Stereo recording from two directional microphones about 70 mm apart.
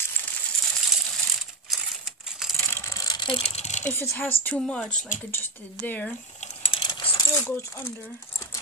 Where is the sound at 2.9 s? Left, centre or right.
Left.